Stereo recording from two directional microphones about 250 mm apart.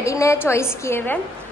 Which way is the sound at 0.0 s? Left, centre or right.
Centre.